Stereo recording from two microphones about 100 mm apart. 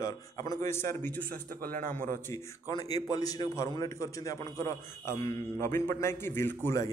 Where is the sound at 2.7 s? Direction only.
40° left (ahead or behind); by 6.8 s 25° left (ahead or behind).